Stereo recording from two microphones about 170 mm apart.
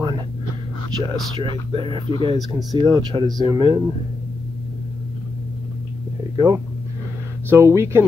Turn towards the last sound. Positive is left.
turn(degrees=-15)  # may be behind; listen again after turning